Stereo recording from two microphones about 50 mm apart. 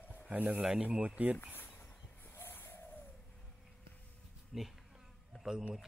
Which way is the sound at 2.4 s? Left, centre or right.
Left.